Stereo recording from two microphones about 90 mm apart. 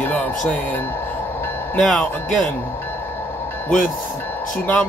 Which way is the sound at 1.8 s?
10° left (ahead or behind).